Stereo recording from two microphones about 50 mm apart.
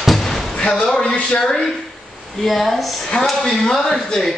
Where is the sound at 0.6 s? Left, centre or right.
Centre.